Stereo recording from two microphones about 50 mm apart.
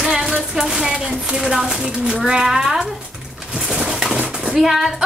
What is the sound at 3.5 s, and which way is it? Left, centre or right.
Bird, centre.